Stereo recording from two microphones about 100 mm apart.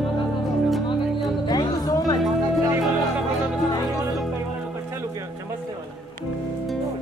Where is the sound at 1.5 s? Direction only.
45° left (ahead or behind).